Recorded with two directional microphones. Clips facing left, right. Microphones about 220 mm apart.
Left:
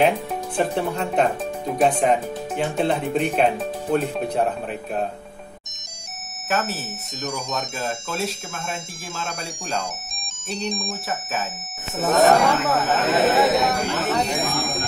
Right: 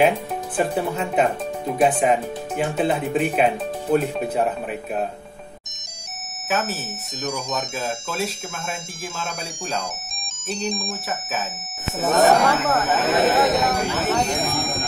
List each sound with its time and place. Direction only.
0.6 s speech: 5° right (ahead or behind)
6.5 s speech: centre (ahead or behind)